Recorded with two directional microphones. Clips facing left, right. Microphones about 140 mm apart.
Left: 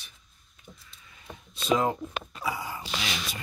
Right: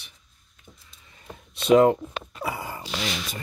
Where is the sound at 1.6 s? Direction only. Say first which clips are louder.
Right 9 dB; 65° right (ahead or behind).